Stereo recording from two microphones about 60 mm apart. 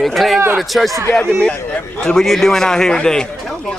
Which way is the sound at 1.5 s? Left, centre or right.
Centre.